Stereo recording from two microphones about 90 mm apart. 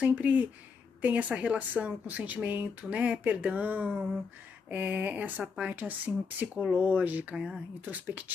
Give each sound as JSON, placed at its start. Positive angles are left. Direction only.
{"t": 0.0, "sound": "speech", "side_deg": -15}
{"t": 7.8, "sound": "speech", "side_deg": -20}